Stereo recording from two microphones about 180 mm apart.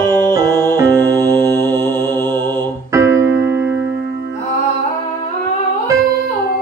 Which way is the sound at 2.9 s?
15° right (ahead or behind).